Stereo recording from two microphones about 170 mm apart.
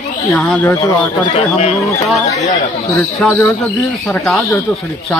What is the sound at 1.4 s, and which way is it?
Speech, 40° left (ahead or behind).